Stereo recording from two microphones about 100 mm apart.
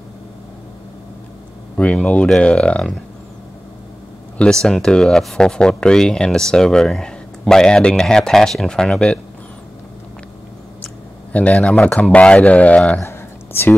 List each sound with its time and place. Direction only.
1.8 s speech: 10° left (ahead or behind)
4.4 s speech: 5° left (ahead or behind)
11.3 s speech: 15° left (ahead or behind)
13.0 s a sound: 25° left (ahead or behind)